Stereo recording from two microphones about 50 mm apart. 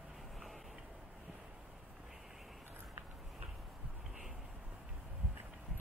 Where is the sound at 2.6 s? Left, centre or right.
Right.